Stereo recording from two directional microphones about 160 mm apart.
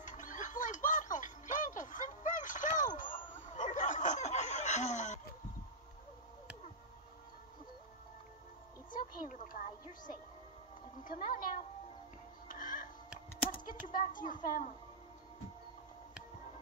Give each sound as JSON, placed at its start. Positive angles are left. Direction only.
{"t": 0.0, "sound": "music", "side_deg": 50}
{"t": 8.9, "sound": "a sound", "side_deg": 55}
{"t": 11.1, "sound": "speech", "side_deg": 60}
{"t": 12.4, "sound": "music", "side_deg": 55}
{"t": 13.8, "sound": "speech", "side_deg": 55}